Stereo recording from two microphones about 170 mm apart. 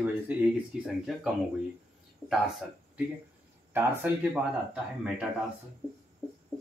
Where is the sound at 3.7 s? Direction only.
10° right (ahead or behind).